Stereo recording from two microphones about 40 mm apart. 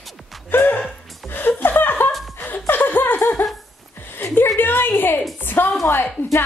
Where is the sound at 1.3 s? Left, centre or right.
Left.